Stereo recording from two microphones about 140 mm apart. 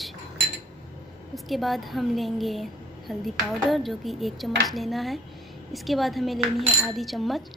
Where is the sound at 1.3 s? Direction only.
Centre (ahead or behind).